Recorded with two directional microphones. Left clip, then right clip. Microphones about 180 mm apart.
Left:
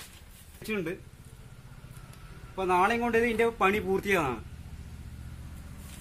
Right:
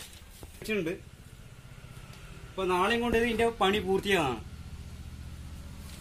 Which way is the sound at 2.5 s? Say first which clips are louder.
Left 2 dB; centre (ahead or behind).